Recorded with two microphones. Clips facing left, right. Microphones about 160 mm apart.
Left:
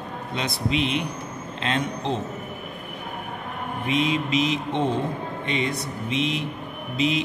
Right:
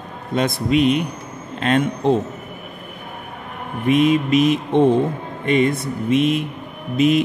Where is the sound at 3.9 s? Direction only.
50° right (ahead or behind).